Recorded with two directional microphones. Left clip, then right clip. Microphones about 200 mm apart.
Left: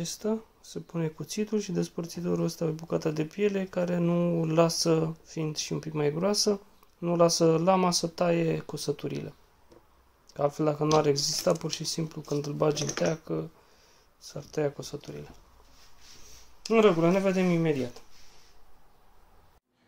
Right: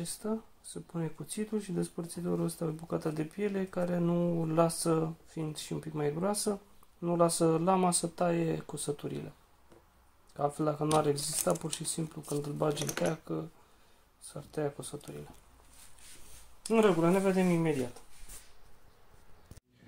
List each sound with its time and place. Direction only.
0.0 s speech: 30° left (ahead or behind)
10.3 s speech: 25° left (ahead or behind)
16.6 s speech: 20° left (ahead or behind)